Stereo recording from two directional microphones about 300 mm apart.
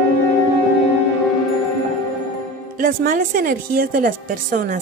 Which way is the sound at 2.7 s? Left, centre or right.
Right.